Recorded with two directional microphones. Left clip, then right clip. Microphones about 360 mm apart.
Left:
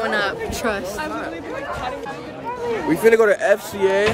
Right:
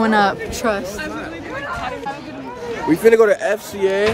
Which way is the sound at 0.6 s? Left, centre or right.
Right.